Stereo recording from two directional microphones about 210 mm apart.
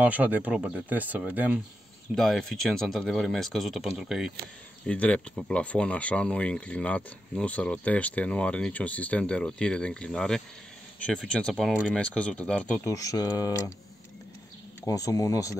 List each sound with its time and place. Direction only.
0.0 s speech: 5° right (ahead or behind); by 13.7 s 15° left (ahead or behind)
14.9 s speech: 15° left (ahead or behind)